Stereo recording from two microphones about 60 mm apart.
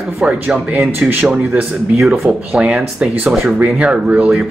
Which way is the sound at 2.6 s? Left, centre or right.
Centre.